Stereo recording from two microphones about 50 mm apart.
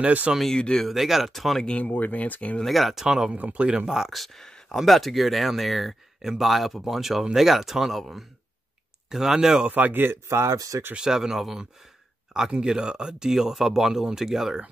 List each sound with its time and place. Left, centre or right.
0.0 s speech: right
0.6 s speech: centre
0.8 s speech: centre
1.7 s speech: left
2.6 s speech: centre
3.3 s speech: right
3.9 s speech: centre
9.7 s a man's voice: right
10.2 s speech: right
11.0 s speech: centre